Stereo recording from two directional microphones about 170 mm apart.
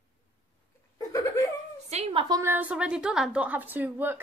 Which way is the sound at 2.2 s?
20° right (ahead or behind).